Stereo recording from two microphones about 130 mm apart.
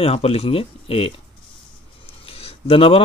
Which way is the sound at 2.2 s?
45° left (ahead or behind).